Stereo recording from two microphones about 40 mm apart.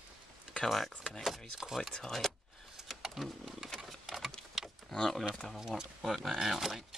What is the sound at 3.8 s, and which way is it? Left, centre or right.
Patter, centre.